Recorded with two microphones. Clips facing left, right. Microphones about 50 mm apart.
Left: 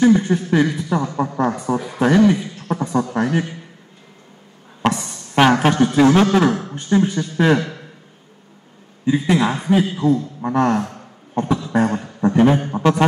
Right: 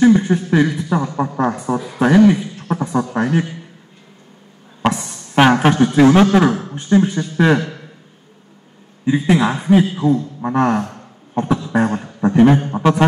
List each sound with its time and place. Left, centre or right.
0.0 s a man's voice: centre
4.8 s music: centre
6.0 s speech: centre
9.0 s a man's voice: centre